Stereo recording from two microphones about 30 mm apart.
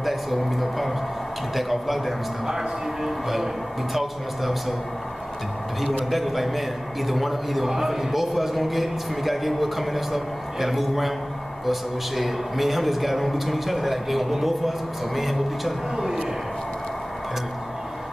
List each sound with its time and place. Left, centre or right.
0.0 s a man's voice: centre
2.4 s speech: centre
3.9 s a man's voice: centre
6.0 s a man's voice: centre